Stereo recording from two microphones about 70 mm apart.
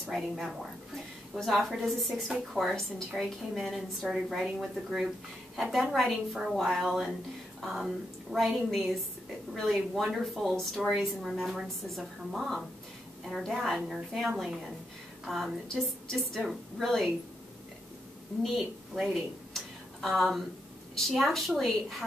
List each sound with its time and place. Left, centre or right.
0.0 s a woman's voice: centre
18.4 s a woman's voice: centre